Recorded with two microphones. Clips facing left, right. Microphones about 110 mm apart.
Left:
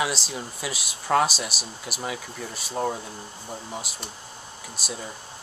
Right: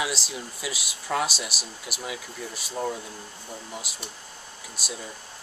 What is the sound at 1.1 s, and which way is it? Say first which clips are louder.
Speech: left 6 dB; 50° left (ahead or behind).